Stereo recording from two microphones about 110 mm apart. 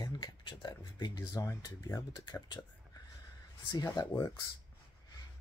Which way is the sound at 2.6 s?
20° left (ahead or behind).